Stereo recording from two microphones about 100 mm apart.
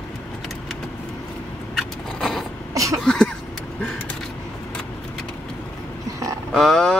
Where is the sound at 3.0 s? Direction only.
5° left (ahead or behind).